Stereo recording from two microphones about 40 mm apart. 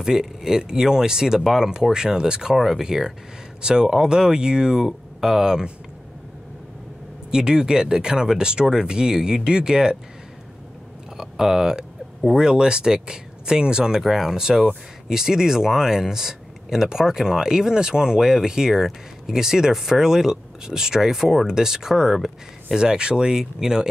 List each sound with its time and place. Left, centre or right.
0.0 s speech: centre
2.5 s speech: centre
7.2 s speech: centre
11.1 s speech: centre
14.0 s speech: centre